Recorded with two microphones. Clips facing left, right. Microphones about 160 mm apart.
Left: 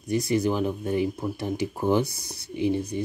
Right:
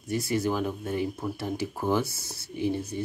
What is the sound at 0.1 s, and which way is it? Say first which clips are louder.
Speech: left 3 dB; 15° left (ahead or behind).